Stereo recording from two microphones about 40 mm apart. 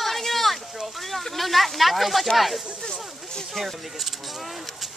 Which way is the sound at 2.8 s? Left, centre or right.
Centre.